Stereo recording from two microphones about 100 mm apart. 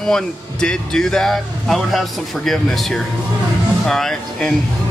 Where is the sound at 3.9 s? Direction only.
5° left (ahead or behind).